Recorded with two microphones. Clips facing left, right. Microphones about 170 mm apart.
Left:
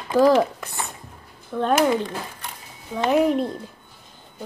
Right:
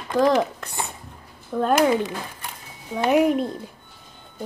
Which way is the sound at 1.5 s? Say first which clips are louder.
Right 1 dB; 5° right (ahead or behind).